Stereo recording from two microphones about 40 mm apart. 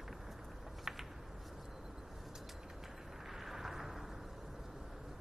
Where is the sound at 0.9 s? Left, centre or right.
Centre.